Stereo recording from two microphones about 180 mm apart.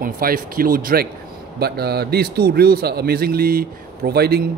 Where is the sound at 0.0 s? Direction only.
50° right (ahead or behind).